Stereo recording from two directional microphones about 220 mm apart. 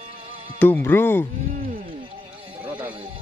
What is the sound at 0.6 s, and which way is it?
Speech, 10° left (ahead or behind).